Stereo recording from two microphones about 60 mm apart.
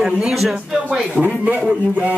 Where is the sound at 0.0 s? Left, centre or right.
Centre.